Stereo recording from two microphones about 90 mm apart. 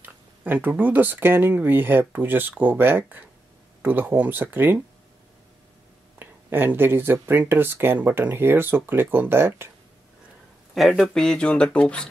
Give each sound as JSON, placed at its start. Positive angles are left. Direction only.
{"t": 0.0, "sound": "speech", "side_deg": -20}
{"t": 6.1, "sound": "speech", "side_deg": -20}
{"t": 10.7, "sound": "speech", "side_deg": 0}